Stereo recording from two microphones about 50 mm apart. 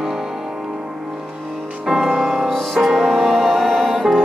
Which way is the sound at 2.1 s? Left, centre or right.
Centre.